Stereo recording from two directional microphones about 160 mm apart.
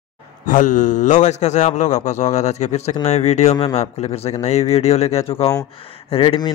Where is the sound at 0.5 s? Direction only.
55° left (ahead or behind).